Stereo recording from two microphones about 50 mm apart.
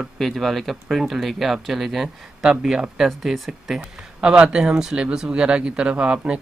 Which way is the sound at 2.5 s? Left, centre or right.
Centre.